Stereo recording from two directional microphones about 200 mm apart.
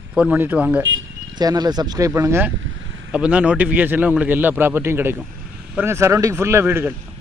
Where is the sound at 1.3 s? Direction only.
20° right (ahead or behind).